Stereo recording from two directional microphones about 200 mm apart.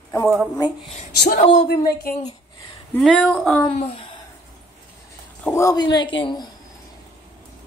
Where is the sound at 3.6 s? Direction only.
30° left (ahead or behind).